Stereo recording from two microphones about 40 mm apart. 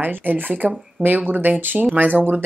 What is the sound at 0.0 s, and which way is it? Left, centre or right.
Speech, right.